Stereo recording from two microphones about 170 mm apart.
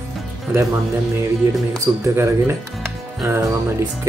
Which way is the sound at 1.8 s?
15° right (ahead or behind).